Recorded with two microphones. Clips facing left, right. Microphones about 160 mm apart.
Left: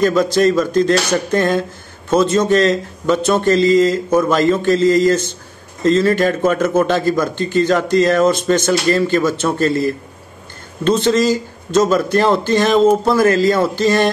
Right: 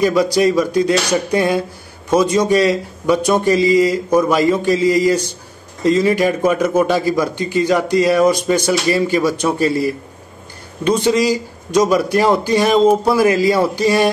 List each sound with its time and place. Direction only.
0.0 s speech: 10° right (ahead or behind)